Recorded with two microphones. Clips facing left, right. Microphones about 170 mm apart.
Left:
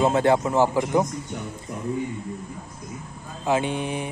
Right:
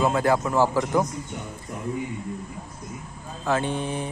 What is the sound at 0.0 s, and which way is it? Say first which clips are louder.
Speech: left 2 dB; 25° left (ahead or behind).